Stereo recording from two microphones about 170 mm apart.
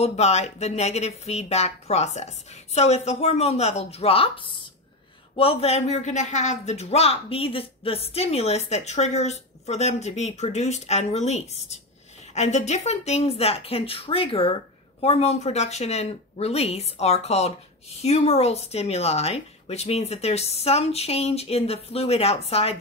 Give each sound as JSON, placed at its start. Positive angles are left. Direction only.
{"t": 0.0, "sound": "speech", "side_deg": 40}